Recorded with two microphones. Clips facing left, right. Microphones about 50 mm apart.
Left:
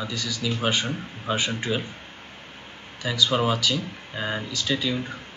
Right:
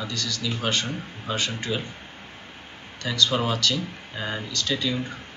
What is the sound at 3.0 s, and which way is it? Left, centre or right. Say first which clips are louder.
Speech: left 1 dB; centre.